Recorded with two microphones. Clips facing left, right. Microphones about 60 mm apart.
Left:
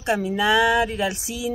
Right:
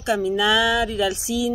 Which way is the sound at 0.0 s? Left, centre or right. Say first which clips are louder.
Right 1 dB; left.